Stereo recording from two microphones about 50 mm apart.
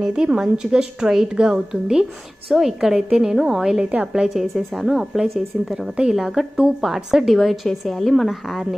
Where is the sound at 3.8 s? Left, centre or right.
Right.